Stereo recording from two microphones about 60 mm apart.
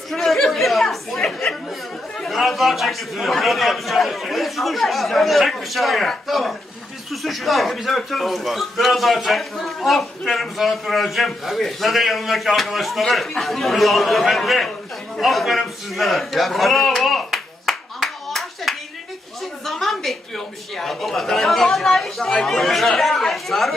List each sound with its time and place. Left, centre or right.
0.1 s chatter: centre
2.1 s a man's voice: centre
15.1 s a sound: centre
19.6 s a man's voice: centre